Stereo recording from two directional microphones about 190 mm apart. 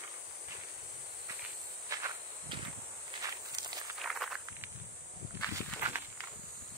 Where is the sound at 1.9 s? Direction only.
15° right (ahead or behind).